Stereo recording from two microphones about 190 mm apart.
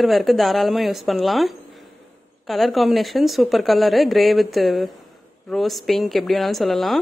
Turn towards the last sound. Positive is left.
turn(degrees=0)  # may be behind; listen again after turning